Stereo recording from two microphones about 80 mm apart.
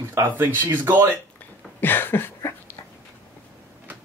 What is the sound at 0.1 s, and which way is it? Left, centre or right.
Speech, right.